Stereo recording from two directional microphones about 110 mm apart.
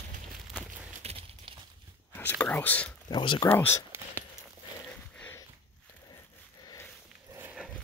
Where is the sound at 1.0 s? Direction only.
70° right (ahead or behind).